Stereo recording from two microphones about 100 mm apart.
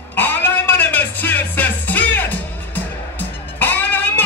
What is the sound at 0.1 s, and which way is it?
Music, 20° left (ahead or behind).